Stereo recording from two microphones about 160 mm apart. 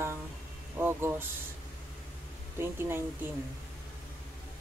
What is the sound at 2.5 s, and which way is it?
Speech, 15° right (ahead or behind).